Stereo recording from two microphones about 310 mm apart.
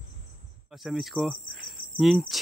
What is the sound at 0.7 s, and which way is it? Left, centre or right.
Speech, centre.